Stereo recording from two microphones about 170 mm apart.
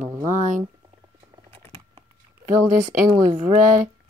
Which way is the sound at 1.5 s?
35° right (ahead or behind).